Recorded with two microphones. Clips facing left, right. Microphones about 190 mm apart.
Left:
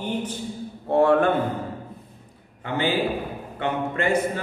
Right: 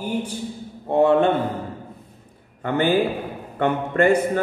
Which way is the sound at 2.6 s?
55° right (ahead or behind).